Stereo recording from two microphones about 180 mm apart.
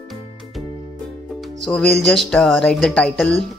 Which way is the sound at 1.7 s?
Centre (ahead or behind).